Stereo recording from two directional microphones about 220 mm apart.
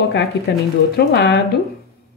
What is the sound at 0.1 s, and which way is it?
Speech, 45° left (ahead or behind).